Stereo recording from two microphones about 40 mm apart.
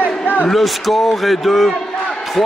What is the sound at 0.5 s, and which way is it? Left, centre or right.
A man's voice, centre.